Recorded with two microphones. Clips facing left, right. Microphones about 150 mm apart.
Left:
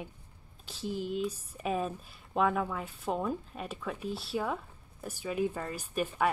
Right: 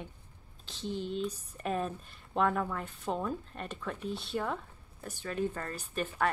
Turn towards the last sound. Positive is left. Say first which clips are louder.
# left 2 dB
turn(degrees=10)  # may be behind; listen again after turning